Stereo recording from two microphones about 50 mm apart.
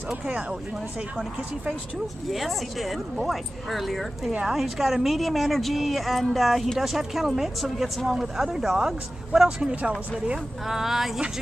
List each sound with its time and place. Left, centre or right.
2.3 s a woman's voice: centre
9.6 s speech: right
10.7 s speech: centre